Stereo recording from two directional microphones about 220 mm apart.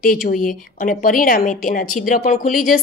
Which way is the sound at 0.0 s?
40° left (ahead or behind).